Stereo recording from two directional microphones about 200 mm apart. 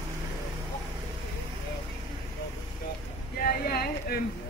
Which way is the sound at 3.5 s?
50° left (ahead or behind).